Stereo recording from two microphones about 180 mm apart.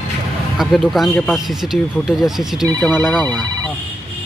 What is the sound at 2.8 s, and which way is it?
Speech, 10° left (ahead or behind).